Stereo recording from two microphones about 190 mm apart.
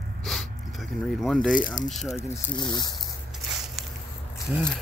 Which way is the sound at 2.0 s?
20° left (ahead or behind).